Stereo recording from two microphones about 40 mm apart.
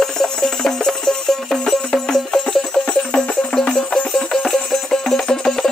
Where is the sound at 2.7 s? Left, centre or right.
Left.